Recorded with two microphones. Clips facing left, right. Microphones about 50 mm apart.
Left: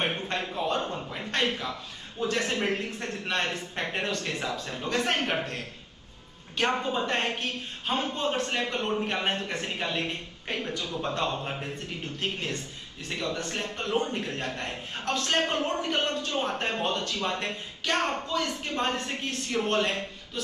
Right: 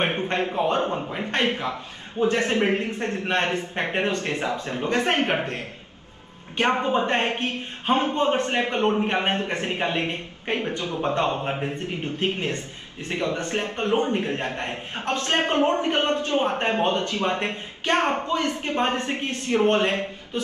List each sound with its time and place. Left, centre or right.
0.0 s a man's voice: right